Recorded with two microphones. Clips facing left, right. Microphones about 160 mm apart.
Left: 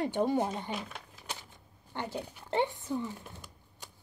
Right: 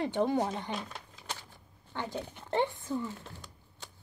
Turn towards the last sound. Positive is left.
turn(degrees=15)  # may be behind; listen again after turning